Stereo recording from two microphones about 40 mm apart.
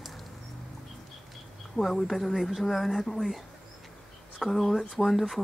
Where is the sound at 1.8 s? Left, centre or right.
Centre.